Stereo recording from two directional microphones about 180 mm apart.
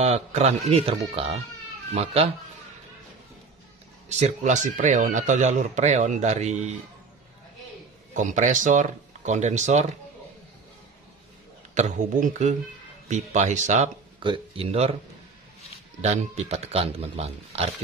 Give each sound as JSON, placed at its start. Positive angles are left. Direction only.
{"t": 0.0, "sound": "speech", "side_deg": -35}
{"t": 4.1, "sound": "speech", "side_deg": -40}
{"t": 8.1, "sound": "speech", "side_deg": -45}
{"t": 11.7, "sound": "speech", "side_deg": -40}
{"t": 14.2, "sound": "speech", "side_deg": -30}
{"t": 16.0, "sound": "speech", "side_deg": -40}